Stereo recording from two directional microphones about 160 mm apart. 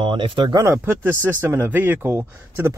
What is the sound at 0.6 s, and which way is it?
Speech, 15° right (ahead or behind).